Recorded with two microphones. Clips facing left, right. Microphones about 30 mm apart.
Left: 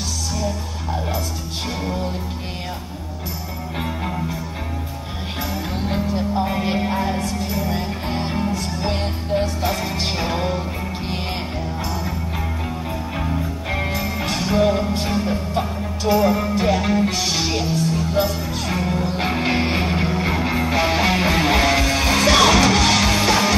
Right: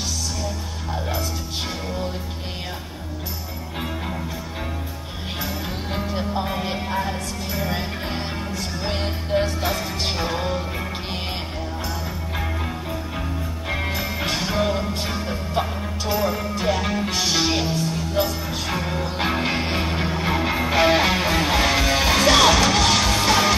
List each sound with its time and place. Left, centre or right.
5.9 s music: centre
6.4 s music: centre
7.5 s music: centre
13.7 s music: centre
16.6 s music: centre
17.7 s music: centre
18.7 s music: centre
21.1 s music: centre